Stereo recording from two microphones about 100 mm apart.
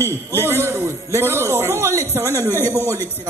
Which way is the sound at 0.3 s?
25° right (ahead or behind).